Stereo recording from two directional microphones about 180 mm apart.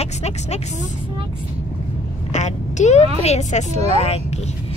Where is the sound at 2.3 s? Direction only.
40° left (ahead or behind).